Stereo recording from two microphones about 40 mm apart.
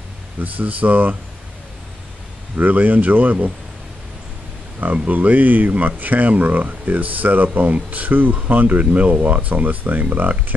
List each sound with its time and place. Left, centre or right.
0.4 s speech: right
2.5 s speech: right
4.7 s speech: right